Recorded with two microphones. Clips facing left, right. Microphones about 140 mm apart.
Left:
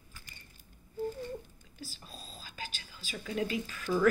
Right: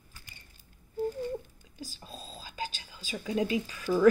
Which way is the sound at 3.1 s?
20° right (ahead or behind).